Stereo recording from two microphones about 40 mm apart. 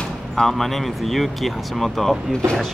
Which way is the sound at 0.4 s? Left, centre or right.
Centre.